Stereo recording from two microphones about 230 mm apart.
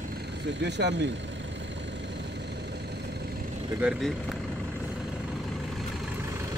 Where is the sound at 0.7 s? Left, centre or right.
Right.